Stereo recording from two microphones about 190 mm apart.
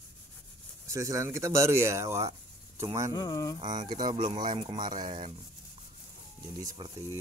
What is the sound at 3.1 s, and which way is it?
Mantra, 20° left (ahead or behind).